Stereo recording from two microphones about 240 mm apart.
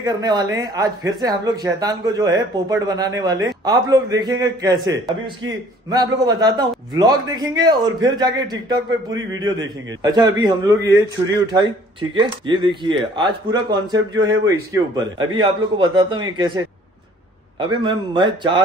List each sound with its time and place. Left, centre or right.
0.0 s a man's voice: centre